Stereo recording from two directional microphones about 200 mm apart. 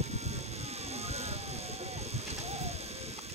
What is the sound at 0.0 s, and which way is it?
Vehicle, 35° right (ahead or behind).